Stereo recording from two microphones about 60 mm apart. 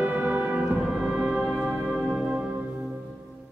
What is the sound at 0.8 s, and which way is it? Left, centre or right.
Music, centre.